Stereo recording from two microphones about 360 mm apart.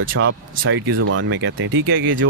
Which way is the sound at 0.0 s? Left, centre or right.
Right.